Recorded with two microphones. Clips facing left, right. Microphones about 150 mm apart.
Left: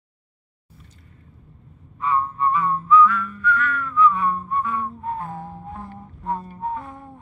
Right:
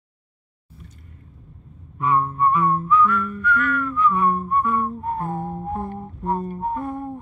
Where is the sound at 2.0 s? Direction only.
55° right (ahead or behind).